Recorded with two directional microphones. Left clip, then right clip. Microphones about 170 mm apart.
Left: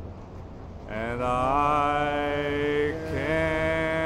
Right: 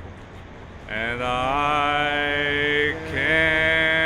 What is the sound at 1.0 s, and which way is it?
Mantra, 15° left (ahead or behind).